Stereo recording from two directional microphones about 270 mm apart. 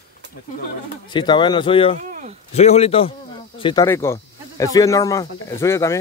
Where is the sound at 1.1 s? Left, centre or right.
Centre.